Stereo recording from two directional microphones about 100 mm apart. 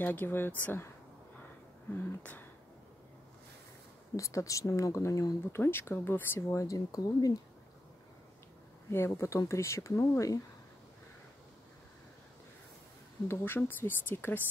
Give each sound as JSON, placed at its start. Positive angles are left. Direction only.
{"t": 0.0, "sound": "speech", "side_deg": 20}
{"t": 2.0, "sound": "a sound", "side_deg": 20}
{"t": 4.2, "sound": "speech", "side_deg": 35}
{"t": 8.9, "sound": "speech", "side_deg": 25}
{"t": 13.3, "sound": "speech", "side_deg": 20}